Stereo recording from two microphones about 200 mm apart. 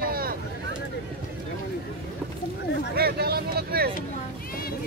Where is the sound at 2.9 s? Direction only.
50° right (ahead or behind).